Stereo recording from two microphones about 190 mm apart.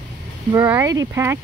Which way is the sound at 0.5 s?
15° right (ahead or behind).